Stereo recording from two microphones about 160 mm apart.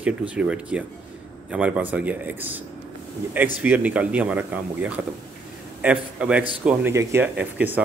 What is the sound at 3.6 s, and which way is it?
Speech, 10° right (ahead or behind).